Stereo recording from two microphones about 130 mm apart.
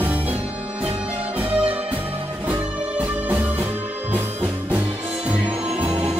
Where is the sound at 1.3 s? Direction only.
10° right (ahead or behind).